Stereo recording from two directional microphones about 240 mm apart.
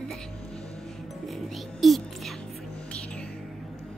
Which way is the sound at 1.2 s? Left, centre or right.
Centre.